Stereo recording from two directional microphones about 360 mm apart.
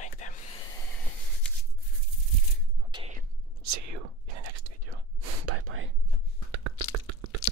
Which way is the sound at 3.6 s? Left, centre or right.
Right.